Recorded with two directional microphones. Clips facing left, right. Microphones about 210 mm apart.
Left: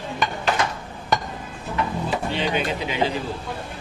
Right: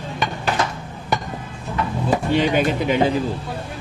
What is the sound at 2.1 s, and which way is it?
Speech, 50° right (ahead or behind).